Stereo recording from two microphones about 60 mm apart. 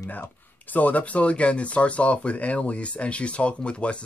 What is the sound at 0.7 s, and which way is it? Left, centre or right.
Speech, left.